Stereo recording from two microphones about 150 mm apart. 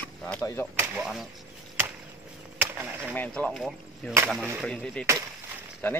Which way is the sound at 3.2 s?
5° left (ahead or behind).